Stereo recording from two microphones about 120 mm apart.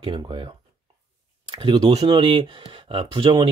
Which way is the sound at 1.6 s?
50° right (ahead or behind).